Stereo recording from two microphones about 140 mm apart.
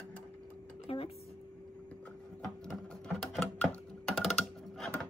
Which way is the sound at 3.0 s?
5° left (ahead or behind).